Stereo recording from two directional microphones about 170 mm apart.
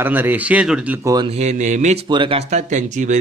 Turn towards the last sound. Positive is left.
turn(degrees=-45)  # may be behind; listen again after turning